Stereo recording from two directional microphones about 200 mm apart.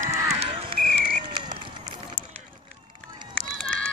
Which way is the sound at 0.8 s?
40° right (ahead or behind).